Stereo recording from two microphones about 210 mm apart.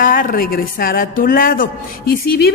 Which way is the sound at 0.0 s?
40° left (ahead or behind).